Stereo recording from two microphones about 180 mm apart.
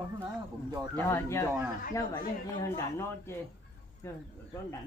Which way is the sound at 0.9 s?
15° left (ahead or behind).